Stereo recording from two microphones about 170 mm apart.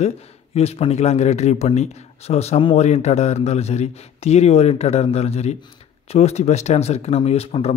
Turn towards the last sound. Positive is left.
turn(degrees=35)  # may be behind; listen again after turning